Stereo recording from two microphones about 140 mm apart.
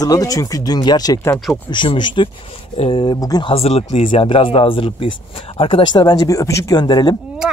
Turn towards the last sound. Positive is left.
turn(degrees=30)  # may be behind; listen again after turning